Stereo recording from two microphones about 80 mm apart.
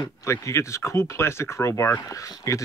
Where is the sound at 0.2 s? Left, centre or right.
Left.